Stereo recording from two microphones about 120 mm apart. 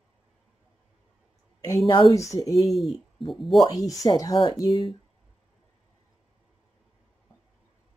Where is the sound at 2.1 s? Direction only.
25° left (ahead or behind).